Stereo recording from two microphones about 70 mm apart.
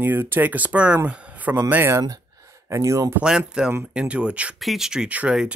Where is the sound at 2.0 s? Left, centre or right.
Right.